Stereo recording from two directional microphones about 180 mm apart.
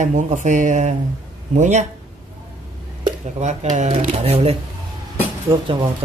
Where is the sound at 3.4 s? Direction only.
40° right (ahead or behind).